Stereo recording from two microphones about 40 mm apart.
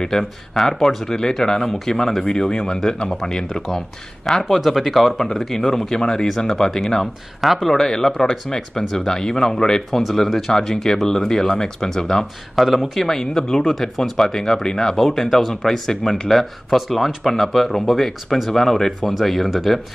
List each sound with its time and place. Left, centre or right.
0.1 s speech: centre
2.2 s speech: centre
12.5 s speech: centre
12.9 s speech: centre